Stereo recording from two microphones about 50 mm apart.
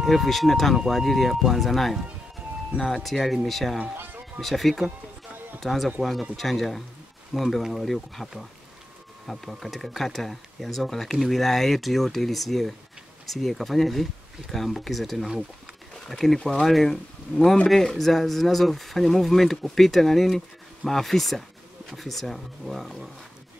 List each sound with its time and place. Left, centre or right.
0.0 s speech: centre
3.9 s a sound: right
4.4 s speech: centre